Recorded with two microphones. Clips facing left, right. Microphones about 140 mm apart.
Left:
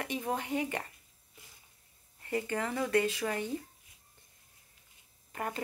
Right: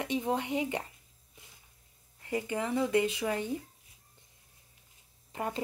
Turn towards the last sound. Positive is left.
turn(degrees=-20)  # may be behind; listen again after turning